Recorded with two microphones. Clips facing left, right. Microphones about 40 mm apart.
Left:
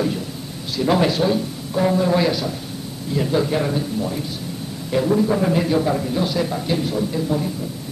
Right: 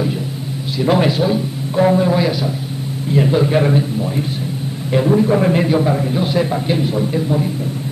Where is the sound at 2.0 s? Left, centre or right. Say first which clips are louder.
Right 2 dB; centre.